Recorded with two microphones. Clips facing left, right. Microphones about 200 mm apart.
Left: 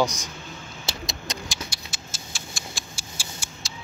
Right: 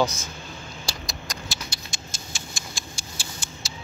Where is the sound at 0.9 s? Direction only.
20° left (ahead or behind).